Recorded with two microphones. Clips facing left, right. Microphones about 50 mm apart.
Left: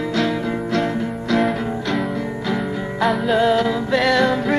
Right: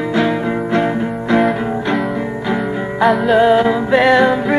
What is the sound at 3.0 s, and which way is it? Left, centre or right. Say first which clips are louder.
Music: right 6 dB; centre.